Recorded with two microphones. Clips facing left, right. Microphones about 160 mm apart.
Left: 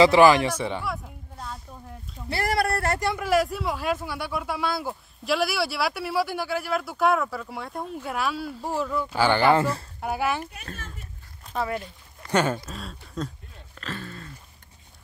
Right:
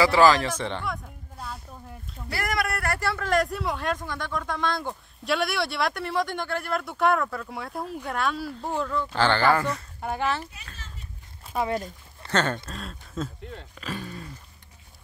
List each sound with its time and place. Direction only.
0.0 s speech: 20° left (ahead or behind); by 1.6 s centre (ahead or behind)
2.2 s speech: 30° left (ahead or behind)
3.3 s speech: 5° left (ahead or behind); by 9.8 s 30° left (ahead or behind)
9.9 s speech: 10° left (ahead or behind)
10.4 s speech: 50° left (ahead or behind)
11.7 s speech: 40° right (ahead or behind)
12.3 s speech: 10° left (ahead or behind)
13.7 s speech: 10° right (ahead or behind)